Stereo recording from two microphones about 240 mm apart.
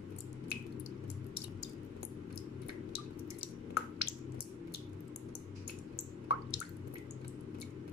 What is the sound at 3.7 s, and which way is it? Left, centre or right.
Squish, left.